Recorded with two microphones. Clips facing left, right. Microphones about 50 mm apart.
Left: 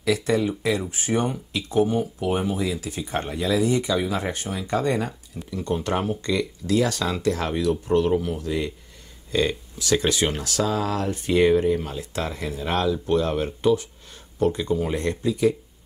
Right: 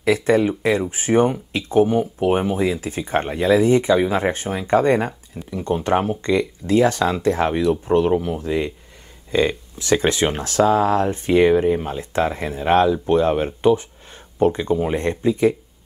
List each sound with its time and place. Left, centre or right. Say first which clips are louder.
0.0 s speech: right 5 dB; right